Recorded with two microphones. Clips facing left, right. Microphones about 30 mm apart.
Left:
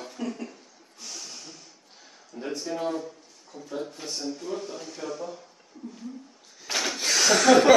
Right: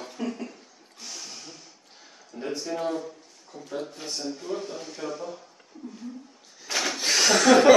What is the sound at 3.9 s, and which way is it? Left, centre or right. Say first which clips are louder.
Speech: even; centre.